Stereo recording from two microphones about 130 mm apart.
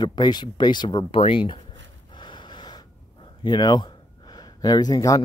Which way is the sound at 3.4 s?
30° left (ahead or behind).